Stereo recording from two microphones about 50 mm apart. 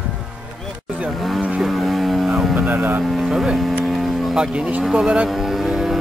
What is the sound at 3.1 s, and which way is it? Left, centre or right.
Vehicle, centre.